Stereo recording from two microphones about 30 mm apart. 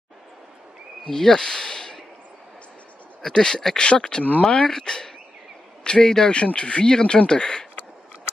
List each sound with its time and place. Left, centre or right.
1.1 s speech: left
3.2 s speech: left
3.7 s speech: left
4.6 s speech: left
6.3 s speech: left